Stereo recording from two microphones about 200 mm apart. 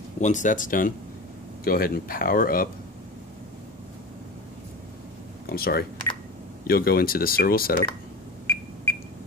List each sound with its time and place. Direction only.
0.2 s speech: 40° left (ahead or behind)
5.5 s speech: 50° left (ahead or behind)